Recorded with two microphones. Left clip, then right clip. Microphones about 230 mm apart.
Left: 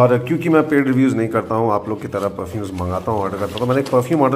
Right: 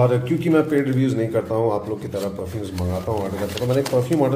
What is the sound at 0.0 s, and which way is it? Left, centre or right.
A man's voice, centre.